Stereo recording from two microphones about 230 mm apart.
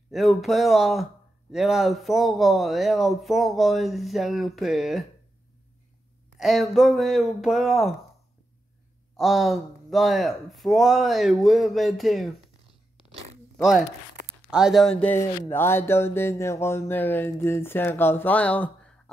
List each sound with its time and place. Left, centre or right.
0.1 s speech: centre
6.4 s speech: centre
9.1 s speech: centre
13.6 s speech: centre